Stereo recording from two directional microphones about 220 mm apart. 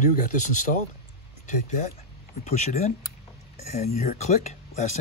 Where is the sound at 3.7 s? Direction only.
30° left (ahead or behind).